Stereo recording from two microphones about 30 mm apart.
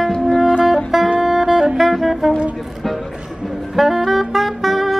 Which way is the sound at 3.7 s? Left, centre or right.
Centre.